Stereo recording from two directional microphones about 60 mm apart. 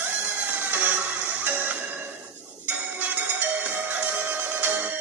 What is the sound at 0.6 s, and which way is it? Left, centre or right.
Music, right.